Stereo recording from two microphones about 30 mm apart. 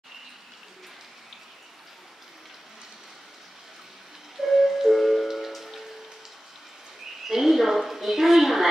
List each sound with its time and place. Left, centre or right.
4.4 s music: centre
5.5 s rain on surface: centre
7.2 s a sound: centre